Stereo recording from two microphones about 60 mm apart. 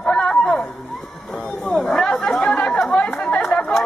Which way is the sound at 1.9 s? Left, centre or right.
Centre.